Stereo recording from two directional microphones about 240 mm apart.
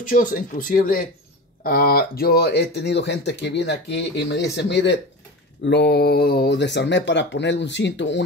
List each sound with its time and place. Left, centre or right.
0.1 s speech: left